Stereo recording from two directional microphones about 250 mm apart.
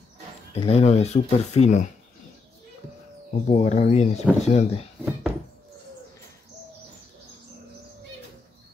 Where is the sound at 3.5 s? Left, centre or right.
Left.